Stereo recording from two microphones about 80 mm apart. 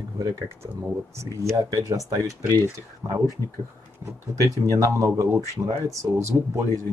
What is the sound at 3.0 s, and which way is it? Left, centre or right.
Speech, right.